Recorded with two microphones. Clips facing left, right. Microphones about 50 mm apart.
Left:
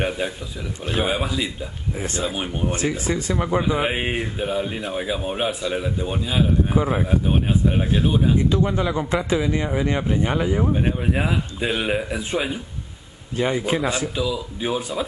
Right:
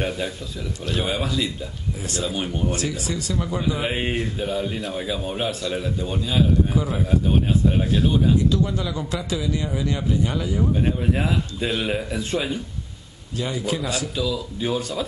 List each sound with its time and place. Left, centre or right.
0.8 s a man's voice: left
6.8 s a man's voice: left
7.1 s speech: centre
8.4 s a man's voice: left
10.8 s a man's voice: centre
13.4 s speech: left